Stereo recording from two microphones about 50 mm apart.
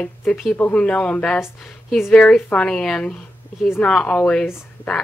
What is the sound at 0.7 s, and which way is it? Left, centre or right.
Speech, left.